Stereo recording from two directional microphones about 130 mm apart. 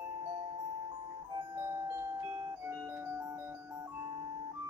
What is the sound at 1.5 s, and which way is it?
Music, 20° right (ahead or behind).